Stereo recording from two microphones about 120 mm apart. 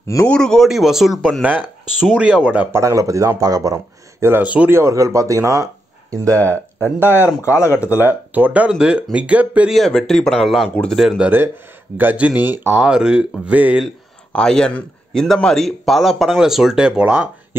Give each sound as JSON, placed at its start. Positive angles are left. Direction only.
{"t": 0.0, "sound": "speech", "side_deg": 20}
{"t": 0.3, "sound": "a man's voice", "side_deg": 5}
{"t": 1.4, "sound": "speech", "side_deg": -15}
{"t": 2.8, "sound": "speech", "side_deg": -25}
{"t": 4.7, "sound": "speech", "side_deg": -25}
{"t": 6.0, "sound": "speech", "side_deg": 10}
{"t": 8.0, "sound": "speech", "side_deg": -15}
{"t": 9.8, "sound": "a man's voice", "side_deg": 5}
{"t": 11.2, "sound": "speech", "side_deg": -20}
{"t": 14.3, "sound": "a man's voice", "side_deg": 5}